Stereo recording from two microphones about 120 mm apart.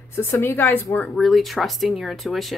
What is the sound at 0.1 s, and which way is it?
Speech, 20° left (ahead or behind).